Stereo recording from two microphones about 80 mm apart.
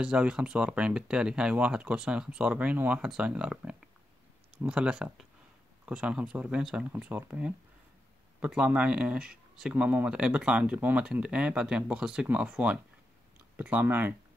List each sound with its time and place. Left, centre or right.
0.0 s speech: centre
7.0 s speech: right
8.4 s speech: centre